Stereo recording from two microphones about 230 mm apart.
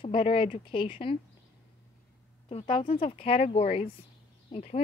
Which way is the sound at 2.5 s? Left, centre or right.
Left.